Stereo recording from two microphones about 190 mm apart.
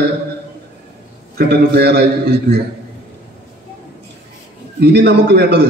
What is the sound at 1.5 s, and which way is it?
A man's voice, 60° right (ahead or behind).